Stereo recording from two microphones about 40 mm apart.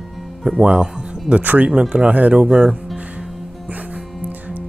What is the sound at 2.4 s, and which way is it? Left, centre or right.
Speech, right.